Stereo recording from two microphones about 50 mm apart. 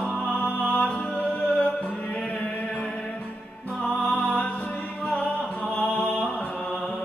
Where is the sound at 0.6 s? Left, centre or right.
Left.